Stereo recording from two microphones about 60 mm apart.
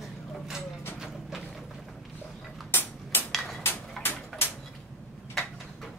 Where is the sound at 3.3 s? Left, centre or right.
Centre.